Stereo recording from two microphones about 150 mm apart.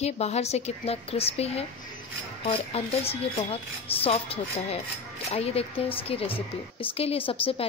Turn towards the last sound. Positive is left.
turn(degrees=35)  # may be behind; listen again after turning